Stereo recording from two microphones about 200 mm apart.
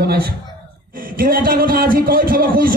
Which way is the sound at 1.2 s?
45° right (ahead or behind).